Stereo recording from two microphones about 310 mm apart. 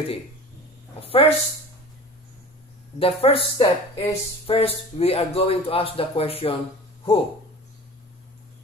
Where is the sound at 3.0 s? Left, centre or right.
Centre.